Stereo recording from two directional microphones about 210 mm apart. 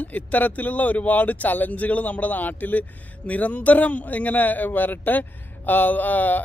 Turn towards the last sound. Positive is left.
turn(degrees=10)  # may be behind; listen again after turning